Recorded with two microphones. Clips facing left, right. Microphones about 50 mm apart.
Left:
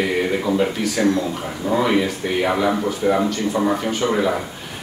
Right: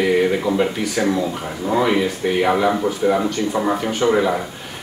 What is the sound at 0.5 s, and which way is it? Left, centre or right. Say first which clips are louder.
Speech: even; centre.